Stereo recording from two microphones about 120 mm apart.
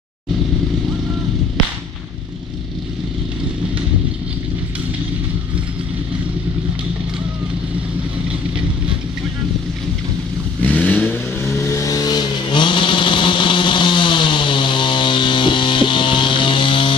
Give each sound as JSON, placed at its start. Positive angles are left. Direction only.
{"t": 10.6, "sound": "vehicle", "side_deg": 15}